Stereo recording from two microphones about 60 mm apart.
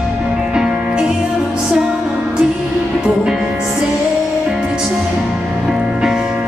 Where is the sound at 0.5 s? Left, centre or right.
Centre.